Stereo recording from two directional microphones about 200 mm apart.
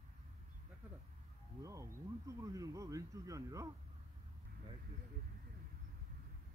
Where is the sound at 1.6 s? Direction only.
15° right (ahead or behind).